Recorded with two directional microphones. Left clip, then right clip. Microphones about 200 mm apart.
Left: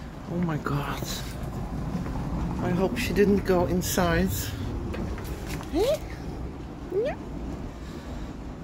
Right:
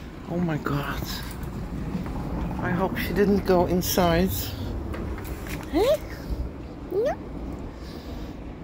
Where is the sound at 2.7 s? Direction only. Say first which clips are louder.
Even; 25° left (ahead or behind).